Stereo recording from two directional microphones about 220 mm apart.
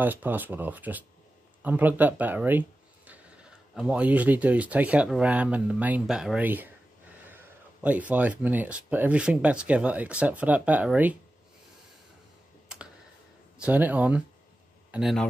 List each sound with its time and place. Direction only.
0.0 s speech: 10° right (ahead or behind)
13.6 s a man's voice: 5° right (ahead or behind)